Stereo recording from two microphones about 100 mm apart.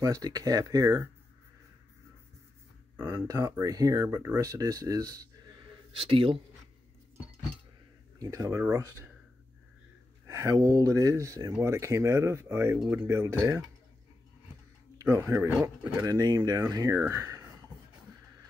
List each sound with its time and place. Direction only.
0.0 s speech: 40° right (ahead or behind)
3.0 s speech: 30° right (ahead or behind)
5.9 s a man's voice: 60° right (ahead or behind)
8.2 s speech: 35° right (ahead or behind)
10.2 s speech: 30° right (ahead or behind)
15.0 s speech: 30° right (ahead or behind)
17.1 s a sound: 30° right (ahead or behind)